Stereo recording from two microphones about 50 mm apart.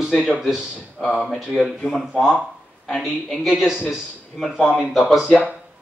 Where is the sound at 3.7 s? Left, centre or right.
Centre.